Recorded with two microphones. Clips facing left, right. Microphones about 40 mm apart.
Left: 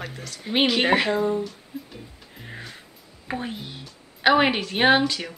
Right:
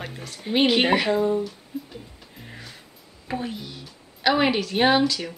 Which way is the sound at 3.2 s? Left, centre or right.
Centre.